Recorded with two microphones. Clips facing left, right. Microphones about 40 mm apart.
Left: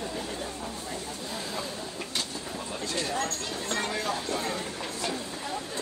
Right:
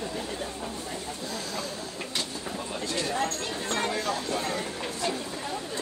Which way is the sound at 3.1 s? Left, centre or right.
Centre.